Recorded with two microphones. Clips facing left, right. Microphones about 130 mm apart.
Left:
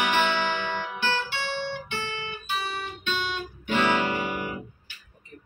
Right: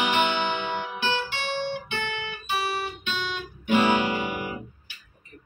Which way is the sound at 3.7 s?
20° right (ahead or behind).